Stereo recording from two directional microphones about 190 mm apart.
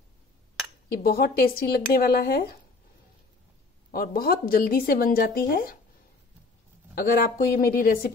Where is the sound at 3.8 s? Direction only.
50° left (ahead or behind).